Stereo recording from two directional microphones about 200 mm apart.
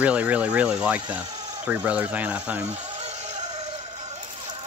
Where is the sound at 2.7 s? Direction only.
35° right (ahead or behind).